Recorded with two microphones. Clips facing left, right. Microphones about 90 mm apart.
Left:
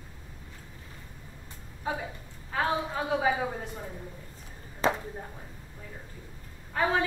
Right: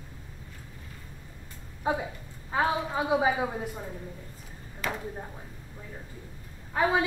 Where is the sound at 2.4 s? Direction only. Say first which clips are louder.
Right 2 dB; 15° right (ahead or behind).